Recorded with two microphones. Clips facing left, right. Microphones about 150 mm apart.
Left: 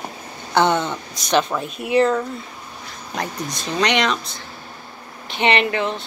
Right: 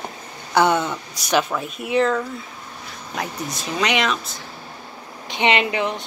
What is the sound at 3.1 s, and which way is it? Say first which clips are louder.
Speech: left 1 dB; 5° right (ahead or behind).